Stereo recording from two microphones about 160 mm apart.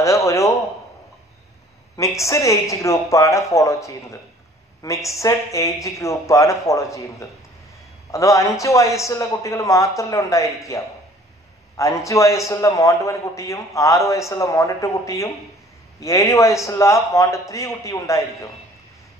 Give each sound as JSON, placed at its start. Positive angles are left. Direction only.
{"t": 0.0, "sound": "a sound", "side_deg": 20}
{"t": 2.0, "sound": "a man's voice", "side_deg": 20}
{"t": 11.7, "sound": "a man's voice", "side_deg": 20}